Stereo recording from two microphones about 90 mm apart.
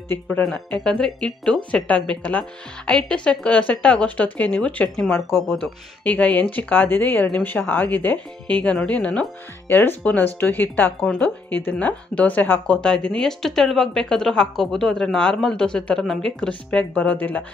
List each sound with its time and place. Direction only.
0.4 s speech: 5° left (ahead or behind)
9.7 s speech: 20° left (ahead or behind)